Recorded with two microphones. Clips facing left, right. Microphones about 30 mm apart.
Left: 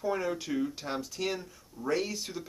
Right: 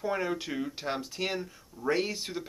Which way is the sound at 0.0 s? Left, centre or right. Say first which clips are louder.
Even; centre.